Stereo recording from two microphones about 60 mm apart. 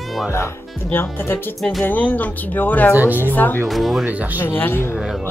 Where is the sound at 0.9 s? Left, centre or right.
Left.